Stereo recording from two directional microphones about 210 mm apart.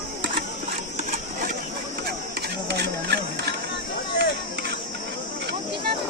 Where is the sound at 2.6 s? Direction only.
55° right (ahead or behind).